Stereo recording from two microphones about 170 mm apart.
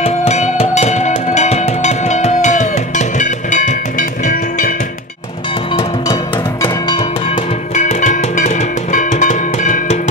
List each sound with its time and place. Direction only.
0.0 s music: 40° left (ahead or behind)
6.6 s music: 25° left (ahead or behind)
7.7 s music: 45° left (ahead or behind)